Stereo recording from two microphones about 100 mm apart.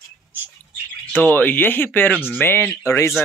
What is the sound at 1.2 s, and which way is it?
Speech, 20° left (ahead or behind).